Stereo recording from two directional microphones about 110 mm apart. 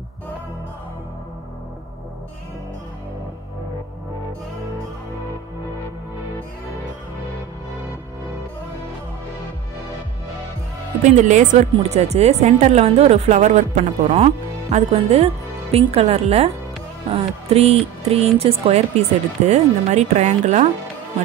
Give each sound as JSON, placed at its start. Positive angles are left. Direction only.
{"t": 11.1, "sound": "speech", "side_deg": -90}
{"t": 11.9, "sound": "a woman's voice", "side_deg": -75}
{"t": 14.1, "sound": "speech", "side_deg": -70}
{"t": 17.1, "sound": "music", "side_deg": -70}
{"t": 18.7, "sound": "speech", "side_deg": -90}